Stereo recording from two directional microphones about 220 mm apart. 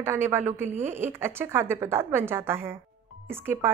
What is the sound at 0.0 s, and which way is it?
A woman's voice, 10° right (ahead or behind).